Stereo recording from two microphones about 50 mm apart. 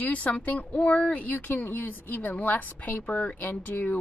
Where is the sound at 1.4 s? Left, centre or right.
Left.